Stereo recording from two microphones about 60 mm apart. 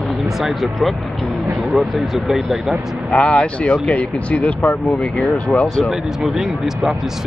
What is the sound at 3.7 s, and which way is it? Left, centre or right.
Speech, left.